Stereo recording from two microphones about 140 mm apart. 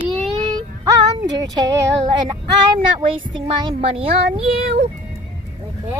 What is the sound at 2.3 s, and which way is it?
Speech, 35° right (ahead or behind).